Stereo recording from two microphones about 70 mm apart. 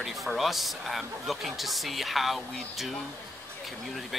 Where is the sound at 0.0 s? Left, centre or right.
Centre.